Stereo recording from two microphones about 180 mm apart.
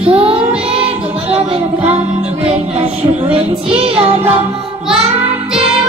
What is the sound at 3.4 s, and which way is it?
Music, 30° right (ahead or behind).